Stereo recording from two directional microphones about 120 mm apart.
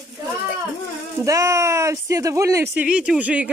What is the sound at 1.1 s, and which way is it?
Speech, 25° right (ahead or behind).